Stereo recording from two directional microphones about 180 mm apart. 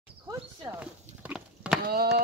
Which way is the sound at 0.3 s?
20° right (ahead or behind).